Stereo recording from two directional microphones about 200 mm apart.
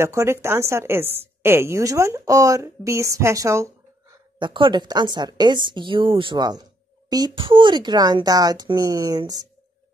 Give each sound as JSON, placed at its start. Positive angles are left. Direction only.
{"t": 0.0, "sound": "a woman's voice", "side_deg": -15}